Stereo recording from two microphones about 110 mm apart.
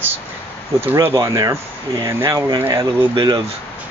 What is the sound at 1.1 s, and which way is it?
Speech, 35° right (ahead or behind).